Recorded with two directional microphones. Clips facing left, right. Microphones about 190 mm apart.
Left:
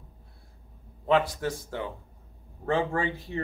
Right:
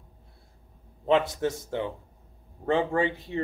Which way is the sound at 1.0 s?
20° right (ahead or behind).